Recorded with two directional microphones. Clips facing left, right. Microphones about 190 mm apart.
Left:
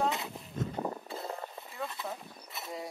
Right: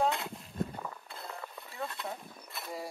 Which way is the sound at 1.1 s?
40° left (ahead or behind).